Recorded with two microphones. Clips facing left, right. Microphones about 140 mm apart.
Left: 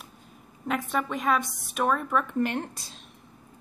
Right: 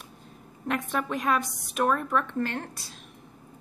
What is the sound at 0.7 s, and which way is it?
A woman's voice, centre (ahead or behind).